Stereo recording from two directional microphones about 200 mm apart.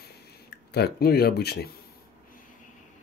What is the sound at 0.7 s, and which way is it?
Speech, 50° left (ahead or behind).